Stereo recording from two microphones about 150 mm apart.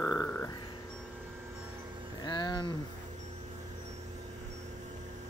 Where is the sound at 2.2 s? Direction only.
30° left (ahead or behind).